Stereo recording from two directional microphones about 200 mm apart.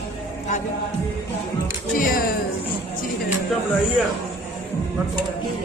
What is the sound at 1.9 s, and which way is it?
Speech, 45° left (ahead or behind).